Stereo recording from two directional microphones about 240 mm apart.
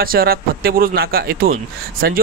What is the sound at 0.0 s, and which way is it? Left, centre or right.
Speech, right.